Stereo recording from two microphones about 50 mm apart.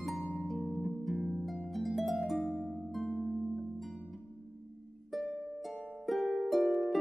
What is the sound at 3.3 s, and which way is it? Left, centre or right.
Harp, centre.